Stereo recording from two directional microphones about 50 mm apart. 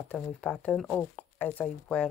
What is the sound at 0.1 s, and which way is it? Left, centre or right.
Speech, left.